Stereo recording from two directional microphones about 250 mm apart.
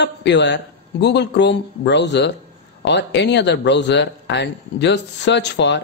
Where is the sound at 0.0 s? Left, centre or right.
Left.